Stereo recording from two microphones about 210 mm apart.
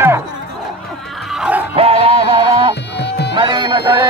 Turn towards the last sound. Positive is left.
turn(degrees=-20)  # may be behind; listen again after turning